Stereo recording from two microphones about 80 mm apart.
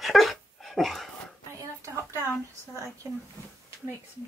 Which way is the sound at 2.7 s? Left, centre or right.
Right.